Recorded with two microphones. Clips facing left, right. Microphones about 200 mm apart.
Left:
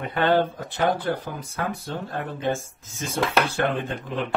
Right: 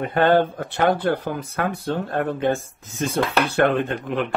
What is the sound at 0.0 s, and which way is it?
Speech, 50° right (ahead or behind).